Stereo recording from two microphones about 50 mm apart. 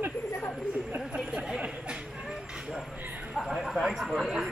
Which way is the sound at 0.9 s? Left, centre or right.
Centre.